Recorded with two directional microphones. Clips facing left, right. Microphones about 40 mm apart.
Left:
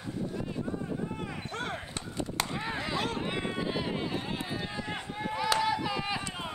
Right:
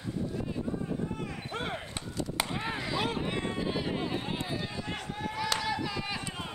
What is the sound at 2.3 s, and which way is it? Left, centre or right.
Chop, centre.